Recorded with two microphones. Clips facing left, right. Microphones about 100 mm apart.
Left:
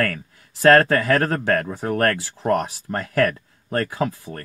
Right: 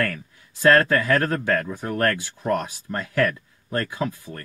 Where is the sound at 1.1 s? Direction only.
35° left (ahead or behind).